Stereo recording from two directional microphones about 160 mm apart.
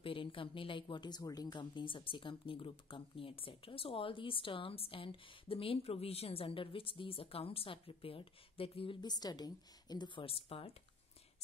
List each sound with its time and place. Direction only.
0.0 s speech: 35° left (ahead or behind)